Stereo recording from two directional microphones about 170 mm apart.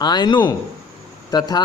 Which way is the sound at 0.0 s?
25° left (ahead or behind).